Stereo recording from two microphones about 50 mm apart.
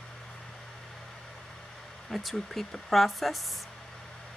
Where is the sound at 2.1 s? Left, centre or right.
Centre.